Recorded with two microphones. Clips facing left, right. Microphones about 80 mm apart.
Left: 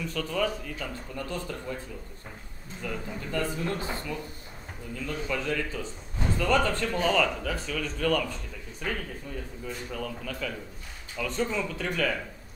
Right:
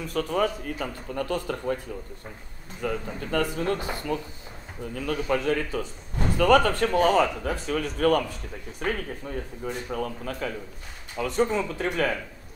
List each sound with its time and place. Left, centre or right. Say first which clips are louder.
0.0 s speech: right 4 dB; right
2.8 s a man's voice: right 5 dB; right
4.9 s a man's voice: right 6 dB; right